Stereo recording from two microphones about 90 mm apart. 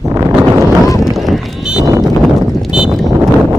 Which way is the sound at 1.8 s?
40° right (ahead or behind).